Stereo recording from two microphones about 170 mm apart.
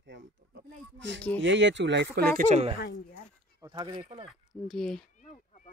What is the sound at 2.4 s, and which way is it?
Speech, 45° right (ahead or behind).